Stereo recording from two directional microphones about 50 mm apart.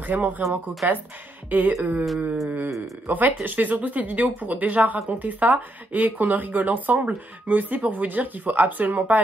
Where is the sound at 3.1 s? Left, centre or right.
Right.